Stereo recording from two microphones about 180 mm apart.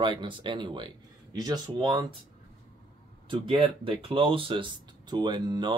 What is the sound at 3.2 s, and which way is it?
Speech, 30° right (ahead or behind).